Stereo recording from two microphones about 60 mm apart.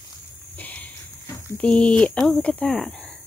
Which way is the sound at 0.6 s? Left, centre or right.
Left.